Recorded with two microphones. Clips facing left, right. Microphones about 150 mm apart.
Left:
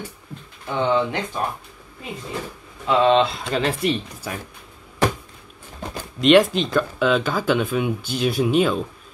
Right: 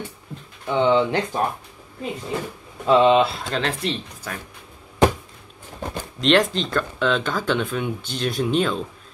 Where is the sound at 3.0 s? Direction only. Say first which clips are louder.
Left 3 dB; 10° right (ahead or behind).